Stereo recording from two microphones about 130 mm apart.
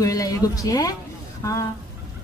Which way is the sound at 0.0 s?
25° left (ahead or behind).